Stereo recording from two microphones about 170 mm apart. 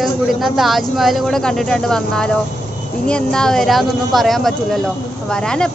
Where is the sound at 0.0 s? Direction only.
Centre (ahead or behind).